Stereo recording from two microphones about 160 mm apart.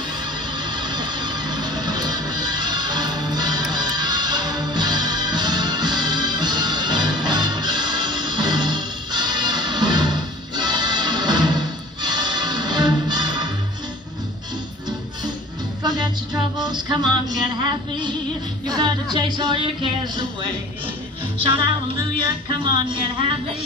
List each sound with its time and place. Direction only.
0.6 s music: 25° right (ahead or behind)
15.8 s music: 25° right (ahead or behind)
18.7 s speech: 25° right (ahead or behind)
22.6 s speech: 30° right (ahead or behind)